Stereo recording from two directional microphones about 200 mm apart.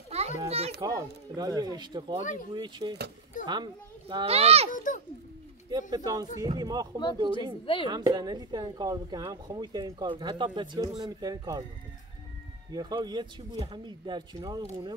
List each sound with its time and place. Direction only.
0.1 s children playing: 30° right (ahead or behind)
0.7 s speech: 15° right (ahead or behind)
4.7 s a child's voice: 40° left (ahead or behind)
5.7 s speech: 20° right (ahead or behind)
7.6 s speech: 25° left (ahead or behind)
7.9 s speech: 20° right (ahead or behind)
12.7 s speech: 20° right (ahead or behind)